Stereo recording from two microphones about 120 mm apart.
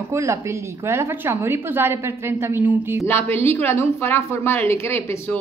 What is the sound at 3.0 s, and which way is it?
Speech, 20° left (ahead or behind).